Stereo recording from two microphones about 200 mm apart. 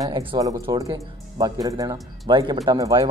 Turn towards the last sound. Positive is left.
turn(degrees=-20)  # may be behind; listen again after turning